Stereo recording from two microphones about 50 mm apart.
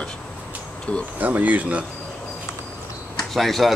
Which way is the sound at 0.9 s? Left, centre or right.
Left.